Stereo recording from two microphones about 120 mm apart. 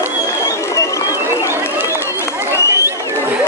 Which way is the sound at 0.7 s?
25° left (ahead or behind).